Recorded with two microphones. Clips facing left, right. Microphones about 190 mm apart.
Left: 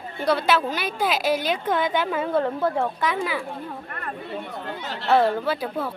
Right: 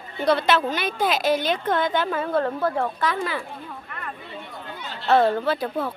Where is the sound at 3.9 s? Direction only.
45° left (ahead or behind).